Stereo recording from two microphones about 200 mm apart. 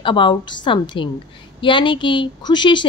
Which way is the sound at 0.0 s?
25° left (ahead or behind).